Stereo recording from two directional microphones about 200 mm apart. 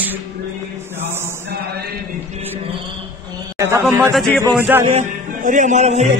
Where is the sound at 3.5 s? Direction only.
15° right (ahead or behind).